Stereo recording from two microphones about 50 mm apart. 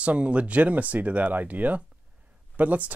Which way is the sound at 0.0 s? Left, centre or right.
Right.